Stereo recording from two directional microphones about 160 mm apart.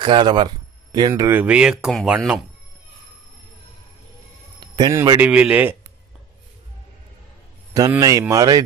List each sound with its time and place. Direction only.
0.0 s speech: 30° right (ahead or behind)
1.3 s speech: 10° right (ahead or behind)
4.7 s speech: 20° right (ahead or behind)
8.0 s speech: 20° right (ahead or behind)